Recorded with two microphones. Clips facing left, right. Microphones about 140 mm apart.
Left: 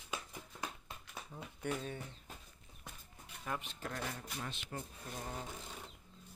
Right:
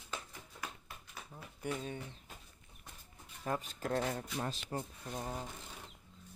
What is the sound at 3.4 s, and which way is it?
Speech, 40° right (ahead or behind).